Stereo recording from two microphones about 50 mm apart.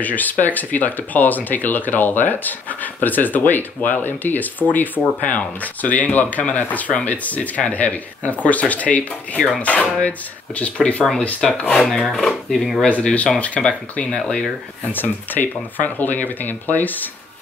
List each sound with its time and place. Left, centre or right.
0.0 s speech: left
11.4 s speech: centre
11.8 s speech: centre
12.8 s speech: left
13.6 s speech: centre
14.9 s speech: left